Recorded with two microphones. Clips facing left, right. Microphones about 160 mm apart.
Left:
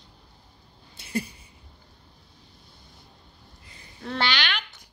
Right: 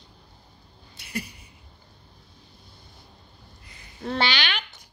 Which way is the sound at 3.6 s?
30° left (ahead or behind).